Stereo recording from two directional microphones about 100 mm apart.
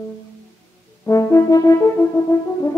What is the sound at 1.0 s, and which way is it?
French horn, 30° left (ahead or behind).